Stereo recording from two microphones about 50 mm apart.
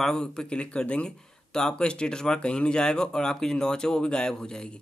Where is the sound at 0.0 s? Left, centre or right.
Centre.